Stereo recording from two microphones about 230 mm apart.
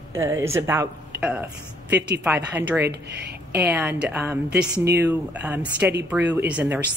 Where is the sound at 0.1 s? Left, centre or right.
Centre.